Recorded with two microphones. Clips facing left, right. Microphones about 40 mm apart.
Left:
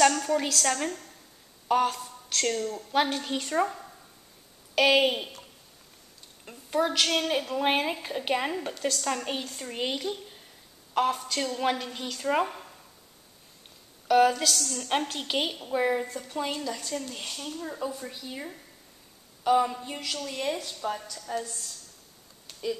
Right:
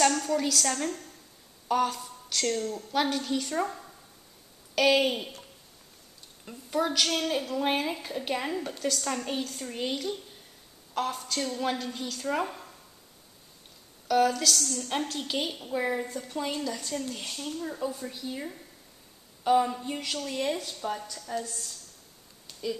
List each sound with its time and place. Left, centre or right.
0.0 s a sound: centre
0.7 s a woman's voice: left
6.4 s a woman's voice: centre
8.7 s a woman's voice: centre
9.0 s a woman's voice: centre
14.0 s a woman's voice: left
14.8 s a woman's voice: left; by 21.7 s centre